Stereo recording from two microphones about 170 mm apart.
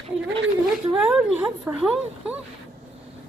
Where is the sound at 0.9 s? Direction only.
5° right (ahead or behind).